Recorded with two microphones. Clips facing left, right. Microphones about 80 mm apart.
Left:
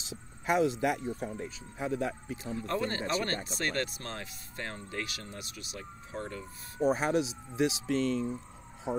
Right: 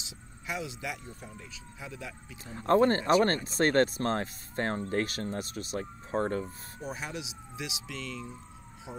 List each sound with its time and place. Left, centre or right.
0.0 s speech: left
2.5 s speech: right
6.8 s speech: left